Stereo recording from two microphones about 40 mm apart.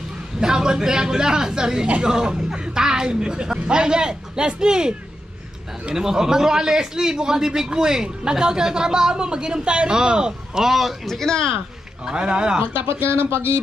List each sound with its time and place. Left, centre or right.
0.4 s a man's voice: centre
5.9 s a man's voice: centre
11.1 s speech: centre
12.0 s speech: right
12.7 s speech: right